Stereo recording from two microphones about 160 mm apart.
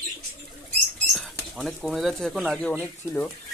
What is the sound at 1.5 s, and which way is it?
Speech, centre (ahead or behind).